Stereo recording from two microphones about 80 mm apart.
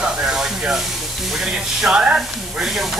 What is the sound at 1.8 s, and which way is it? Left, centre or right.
Speech, centre.